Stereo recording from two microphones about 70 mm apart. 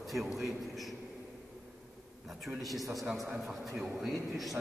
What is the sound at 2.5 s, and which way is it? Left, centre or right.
Speech, right.